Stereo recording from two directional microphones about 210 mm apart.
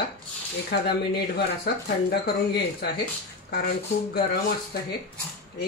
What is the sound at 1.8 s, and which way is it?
Speech, 50° left (ahead or behind).